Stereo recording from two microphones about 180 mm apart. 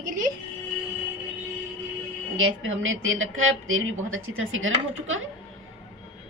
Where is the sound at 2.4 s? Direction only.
90° right.